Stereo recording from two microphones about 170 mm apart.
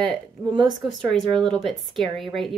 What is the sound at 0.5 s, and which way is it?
Speech, 25° right (ahead or behind).